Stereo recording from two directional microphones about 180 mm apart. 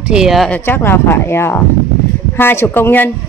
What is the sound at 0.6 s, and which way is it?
Speech, 10° left (ahead or behind).